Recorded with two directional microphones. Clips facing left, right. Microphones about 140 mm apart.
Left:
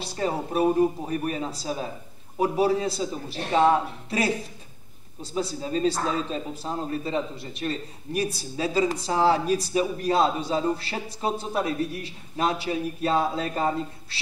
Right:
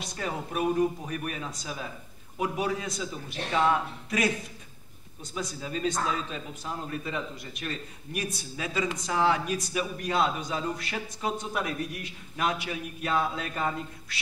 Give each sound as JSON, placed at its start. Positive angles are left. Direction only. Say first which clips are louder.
{"t": 0.0, "sound": "speech", "louder": "left 6 dB", "side_deg": 30}